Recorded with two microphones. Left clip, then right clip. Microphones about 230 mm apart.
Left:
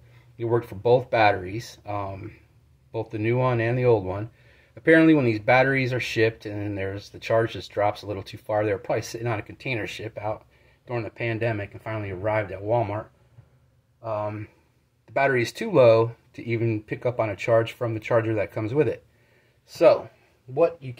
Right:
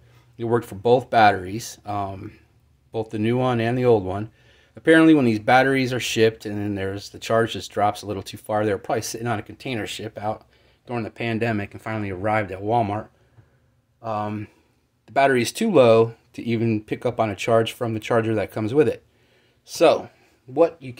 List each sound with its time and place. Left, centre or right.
0.4 s speech: right
14.0 s a man's voice: right